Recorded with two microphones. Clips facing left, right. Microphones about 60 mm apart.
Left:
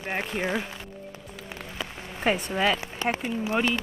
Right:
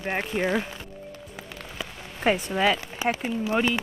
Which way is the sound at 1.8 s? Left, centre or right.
Centre.